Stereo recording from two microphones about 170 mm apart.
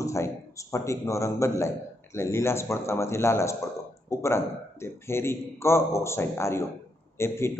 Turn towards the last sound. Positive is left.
turn(degrees=15)  # may be behind; listen again after turning